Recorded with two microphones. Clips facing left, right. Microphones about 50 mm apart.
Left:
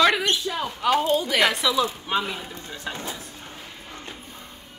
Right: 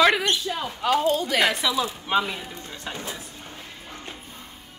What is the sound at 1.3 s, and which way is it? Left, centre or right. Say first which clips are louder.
Speech: left 1 dB; centre.